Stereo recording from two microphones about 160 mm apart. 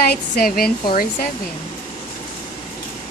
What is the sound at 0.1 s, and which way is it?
Speech, 70° left (ahead or behind).